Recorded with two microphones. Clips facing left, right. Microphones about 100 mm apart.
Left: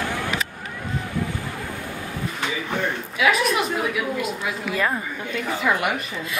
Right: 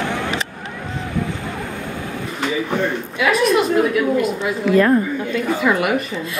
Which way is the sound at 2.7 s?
Centre (ahead or behind).